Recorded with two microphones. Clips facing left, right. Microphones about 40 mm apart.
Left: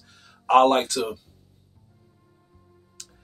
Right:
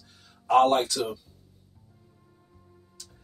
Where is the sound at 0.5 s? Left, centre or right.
Left.